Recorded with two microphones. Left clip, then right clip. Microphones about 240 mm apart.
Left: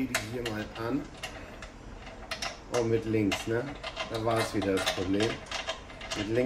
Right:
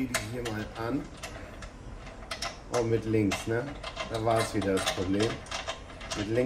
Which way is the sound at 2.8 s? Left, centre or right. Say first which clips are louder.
Even; centre.